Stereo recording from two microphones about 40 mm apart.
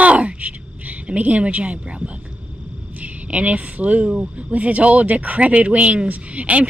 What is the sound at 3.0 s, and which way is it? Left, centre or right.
Speech, right.